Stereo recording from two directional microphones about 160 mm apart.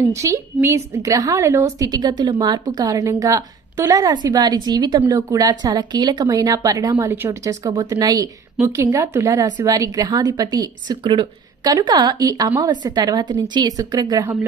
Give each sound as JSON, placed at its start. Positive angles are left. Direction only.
{"t": 0.1, "sound": "a woman's voice", "side_deg": -20}